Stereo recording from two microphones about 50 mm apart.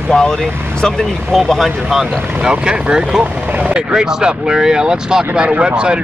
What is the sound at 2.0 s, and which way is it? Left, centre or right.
Speech, centre.